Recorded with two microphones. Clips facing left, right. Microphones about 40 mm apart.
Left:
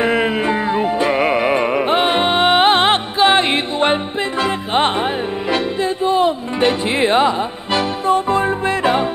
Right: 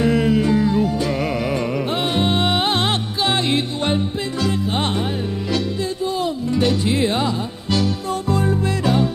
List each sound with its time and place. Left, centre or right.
0.0 s music: left